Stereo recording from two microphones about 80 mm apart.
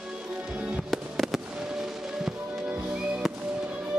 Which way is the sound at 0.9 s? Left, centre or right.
Centre.